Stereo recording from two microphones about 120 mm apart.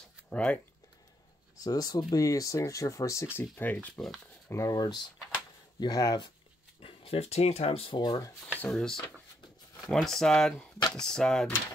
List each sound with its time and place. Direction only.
0.3 s speech: 10° left (ahead or behind)
1.6 s speech: 30° left (ahead or behind)
3.3 s speech: 15° left (ahead or behind)
4.5 s speech: 25° left (ahead or behind)
6.8 s speech: 50° left (ahead or behind)
8.5 s speech: 5° left (ahead or behind)